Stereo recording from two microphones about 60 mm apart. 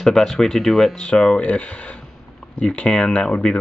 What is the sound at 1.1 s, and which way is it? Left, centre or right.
Speech, centre.